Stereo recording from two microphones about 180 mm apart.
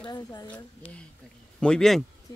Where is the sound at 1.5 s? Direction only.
5° left (ahead or behind).